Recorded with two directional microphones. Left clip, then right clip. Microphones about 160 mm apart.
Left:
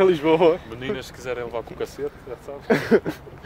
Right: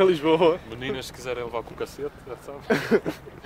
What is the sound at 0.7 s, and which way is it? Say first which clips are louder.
Speech: left 2 dB; 10° right (ahead or behind).